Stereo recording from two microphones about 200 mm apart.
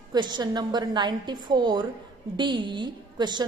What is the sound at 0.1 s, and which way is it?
A woman's voice, 20° right (ahead or behind).